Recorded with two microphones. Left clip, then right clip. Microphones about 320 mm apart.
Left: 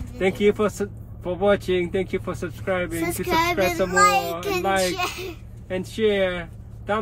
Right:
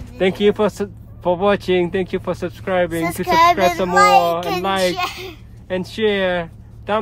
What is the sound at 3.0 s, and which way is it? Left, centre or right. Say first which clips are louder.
A child's voice: right 10 dB; centre.